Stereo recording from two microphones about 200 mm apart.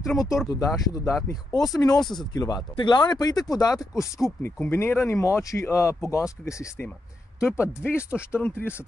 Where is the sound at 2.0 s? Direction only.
Centre (ahead or behind).